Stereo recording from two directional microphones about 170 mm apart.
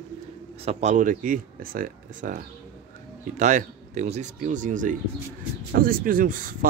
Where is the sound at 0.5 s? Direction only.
40° right (ahead or behind).